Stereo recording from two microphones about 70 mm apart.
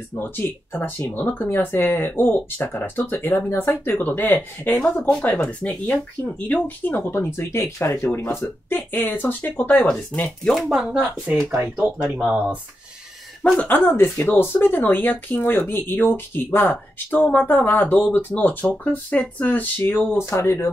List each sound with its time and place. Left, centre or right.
0.1 s speech: left
7.1 s speech: left
9.8 s speech: centre
10.5 s speech: centre
11.0 s speech: right
11.5 s speech: right
13.4 s speech: centre
13.7 s speech: left
20.2 s speech: left